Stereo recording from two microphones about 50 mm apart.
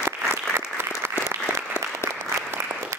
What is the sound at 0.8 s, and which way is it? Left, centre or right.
Applause, right.